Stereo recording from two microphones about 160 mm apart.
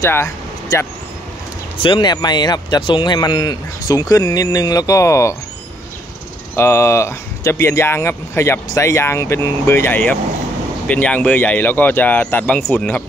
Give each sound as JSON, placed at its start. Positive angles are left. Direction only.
{"t": 0.0, "sound": "vehicle", "side_deg": 20}
{"t": 1.8, "sound": "speech", "side_deg": 30}
{"t": 6.5, "sound": "speech", "side_deg": 15}